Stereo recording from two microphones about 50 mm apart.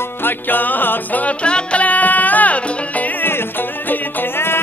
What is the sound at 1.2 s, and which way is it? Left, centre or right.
Music, left.